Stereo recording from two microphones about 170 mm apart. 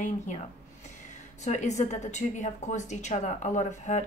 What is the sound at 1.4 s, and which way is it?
Speech, 45° left (ahead or behind).